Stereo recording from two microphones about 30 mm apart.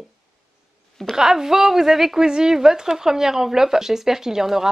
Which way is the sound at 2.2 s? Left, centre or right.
Right.